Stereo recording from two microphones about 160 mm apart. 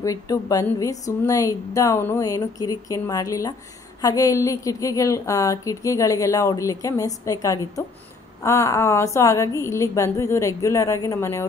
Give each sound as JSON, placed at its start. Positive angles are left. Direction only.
{"t": 0.0, "sound": "a woman's voice", "side_deg": 20}